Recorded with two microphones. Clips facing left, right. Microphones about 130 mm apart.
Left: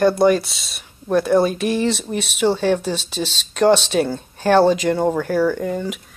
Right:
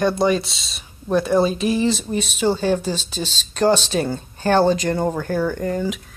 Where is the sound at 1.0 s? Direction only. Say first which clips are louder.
Left 1 dB; centre (ahead or behind).